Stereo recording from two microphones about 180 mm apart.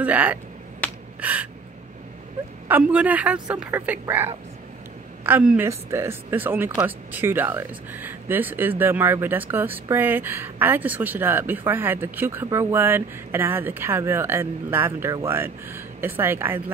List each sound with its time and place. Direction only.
0.0 s speech: 10° right (ahead or behind)
2.7 s speech: 10° right (ahead or behind)